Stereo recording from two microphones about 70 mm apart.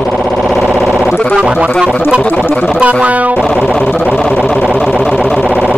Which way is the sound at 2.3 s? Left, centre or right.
Centre.